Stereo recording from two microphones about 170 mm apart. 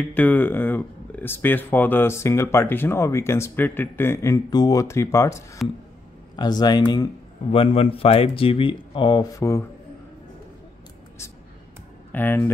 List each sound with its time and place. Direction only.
0.0 s speech: 10° left (ahead or behind)
7.5 s speech: 35° left (ahead or behind); by 9.7 s 15° left (ahead or behind)
12.1 s speech: 10° left (ahead or behind)